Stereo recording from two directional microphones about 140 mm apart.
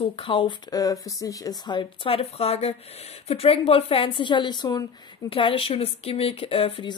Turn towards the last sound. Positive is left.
turn(degrees=40)  # may be behind; listen again after turning